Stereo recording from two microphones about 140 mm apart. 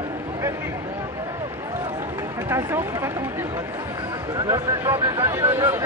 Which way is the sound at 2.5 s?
20° right (ahead or behind).